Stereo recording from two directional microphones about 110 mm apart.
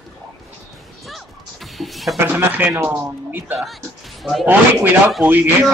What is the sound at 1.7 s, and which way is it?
Music, centre (ahead or behind).